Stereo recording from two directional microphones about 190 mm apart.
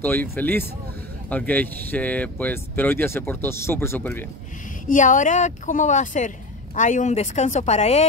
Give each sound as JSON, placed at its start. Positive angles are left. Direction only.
{"t": 0.0, "sound": "speech", "side_deg": 10}
{"t": 4.8, "sound": "speech", "side_deg": 40}